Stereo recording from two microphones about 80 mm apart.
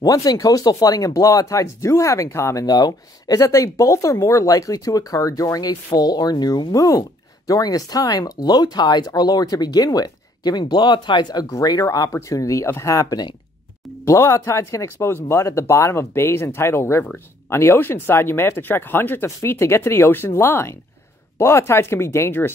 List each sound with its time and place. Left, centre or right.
0.0 s speech: left
2.6 s speech: left
11.8 s speech: left
14.0 s speech: left